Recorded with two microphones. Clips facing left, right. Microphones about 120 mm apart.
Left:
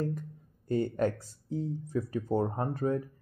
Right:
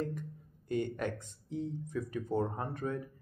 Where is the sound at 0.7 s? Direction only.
35° left (ahead or behind).